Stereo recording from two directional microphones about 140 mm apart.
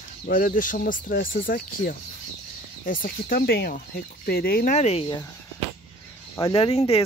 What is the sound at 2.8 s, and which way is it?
Speech, 75° left (ahead or behind).